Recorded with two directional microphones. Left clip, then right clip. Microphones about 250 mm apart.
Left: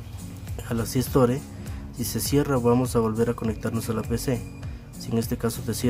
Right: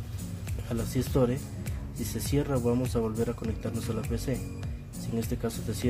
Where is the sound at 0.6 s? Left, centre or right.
Centre.